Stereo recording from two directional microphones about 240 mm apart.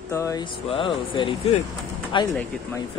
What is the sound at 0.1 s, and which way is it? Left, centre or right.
Speech, centre.